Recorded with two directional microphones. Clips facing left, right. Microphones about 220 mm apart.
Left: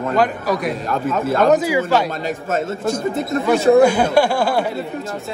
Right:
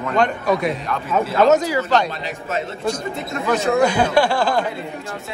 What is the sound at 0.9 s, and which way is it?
Speech, 50° left (ahead or behind).